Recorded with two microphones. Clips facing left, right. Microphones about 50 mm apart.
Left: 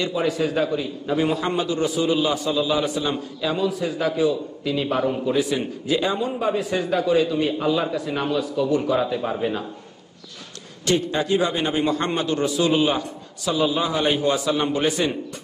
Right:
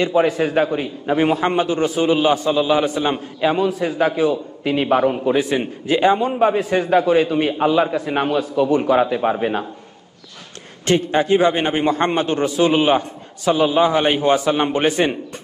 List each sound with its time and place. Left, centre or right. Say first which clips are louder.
0.0 s a man's voice: right 6 dB; right
10.9 s a man's voice: right 5 dB; right